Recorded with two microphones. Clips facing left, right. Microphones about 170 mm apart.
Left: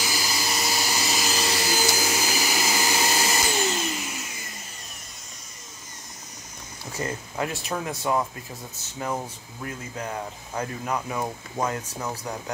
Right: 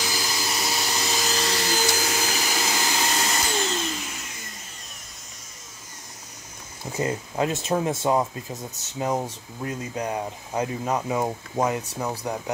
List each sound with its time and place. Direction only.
0.0 s vacuum cleaner: 5° left (ahead or behind)
6.9 s speech: 20° right (ahead or behind)